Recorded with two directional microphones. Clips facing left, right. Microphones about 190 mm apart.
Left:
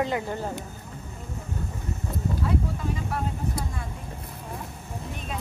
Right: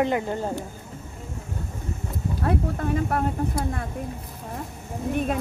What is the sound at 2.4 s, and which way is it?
Speech, 60° right (ahead or behind).